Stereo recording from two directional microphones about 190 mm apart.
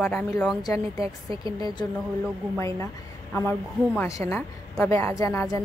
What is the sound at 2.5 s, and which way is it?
A woman's voice, 15° left (ahead or behind).